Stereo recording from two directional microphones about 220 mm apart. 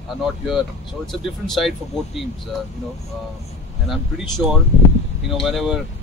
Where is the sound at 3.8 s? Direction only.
Centre (ahead or behind).